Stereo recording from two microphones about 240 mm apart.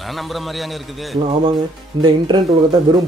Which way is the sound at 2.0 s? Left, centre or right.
Centre.